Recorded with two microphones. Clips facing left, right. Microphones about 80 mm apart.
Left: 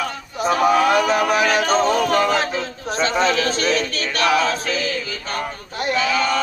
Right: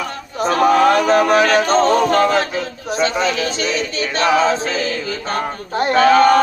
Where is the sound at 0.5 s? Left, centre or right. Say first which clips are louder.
Right 3 dB; centre.